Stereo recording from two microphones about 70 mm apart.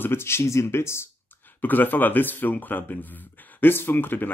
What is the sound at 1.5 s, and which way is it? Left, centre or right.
Speech, left.